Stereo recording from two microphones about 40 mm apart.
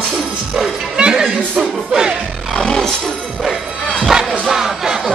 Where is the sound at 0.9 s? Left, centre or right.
Centre.